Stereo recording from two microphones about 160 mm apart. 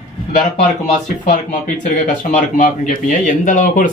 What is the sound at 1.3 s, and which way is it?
Speech, 50° left (ahead or behind).